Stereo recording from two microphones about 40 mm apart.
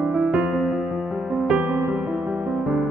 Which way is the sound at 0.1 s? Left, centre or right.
Right.